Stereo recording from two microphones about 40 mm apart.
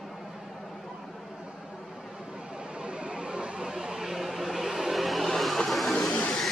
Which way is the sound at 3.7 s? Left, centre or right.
Centre.